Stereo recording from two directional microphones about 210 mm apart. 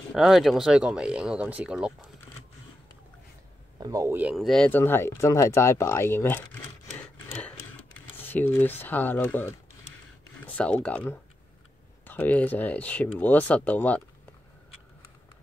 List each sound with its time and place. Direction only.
0.1 s speech: centre (ahead or behind)
3.8 s speech: 15° right (ahead or behind); by 14.0 s 5° left (ahead or behind)